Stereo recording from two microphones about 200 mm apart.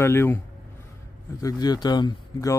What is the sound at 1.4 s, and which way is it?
Speech, 20° left (ahead or behind).